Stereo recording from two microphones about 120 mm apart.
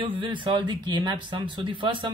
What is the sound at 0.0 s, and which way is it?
Speech, 45° right (ahead or behind).